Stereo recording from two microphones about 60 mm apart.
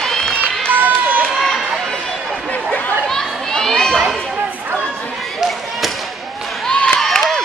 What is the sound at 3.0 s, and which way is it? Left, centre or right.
Children playing, centre.